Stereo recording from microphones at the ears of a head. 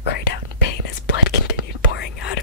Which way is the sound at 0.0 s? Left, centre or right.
Left.